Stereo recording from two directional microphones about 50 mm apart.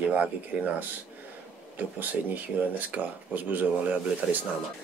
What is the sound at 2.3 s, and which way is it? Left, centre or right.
Speech, right.